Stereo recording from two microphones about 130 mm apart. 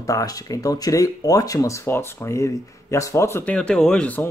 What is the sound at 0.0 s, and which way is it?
Speech, 25° left (ahead or behind).